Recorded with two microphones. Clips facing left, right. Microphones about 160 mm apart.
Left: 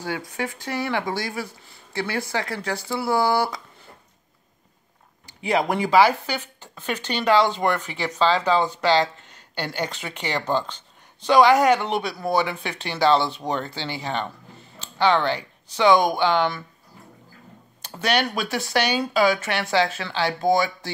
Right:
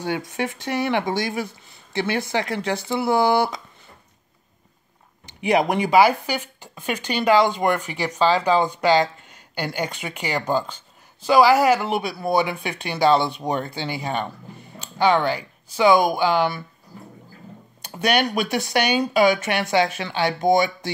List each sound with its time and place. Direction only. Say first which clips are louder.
0.0 s speech: right 3 dB; 20° right (ahead or behind)
5.2 s speech: right 3 dB; 15° right (ahead or behind)
17.8 s speech: right 2 dB; 15° right (ahead or behind)